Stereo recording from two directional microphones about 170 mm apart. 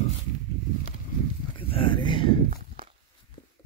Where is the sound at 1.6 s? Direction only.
30° left (ahead or behind).